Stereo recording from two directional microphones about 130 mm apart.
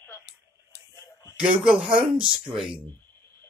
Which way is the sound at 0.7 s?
20° left (ahead or behind).